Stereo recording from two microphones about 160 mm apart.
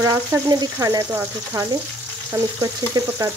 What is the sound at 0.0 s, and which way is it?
Speech, 25° right (ahead or behind).